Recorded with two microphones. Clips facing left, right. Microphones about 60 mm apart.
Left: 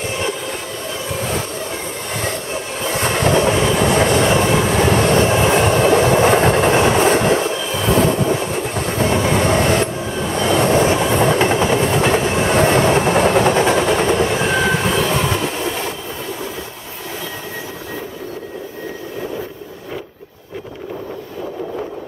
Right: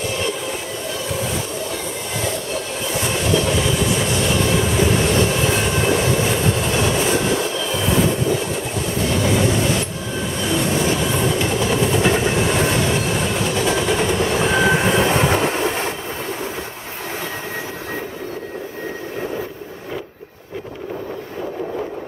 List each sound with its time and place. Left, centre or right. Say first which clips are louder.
2.9 s train: left 4 dB; left
7.5 s train: left 1 dB; centre
8.7 s train: left 4 dB; left
9.3 s train: left 3 dB; left
14.3 s train: left 1 dB; centre
14.6 s train: right 1 dB; centre
14.9 s train: right 1 dB; right